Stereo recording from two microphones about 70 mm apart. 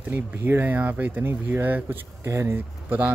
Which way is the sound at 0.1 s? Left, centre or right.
Right.